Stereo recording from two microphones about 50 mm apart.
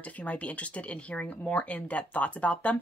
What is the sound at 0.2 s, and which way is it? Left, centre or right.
Speech, left.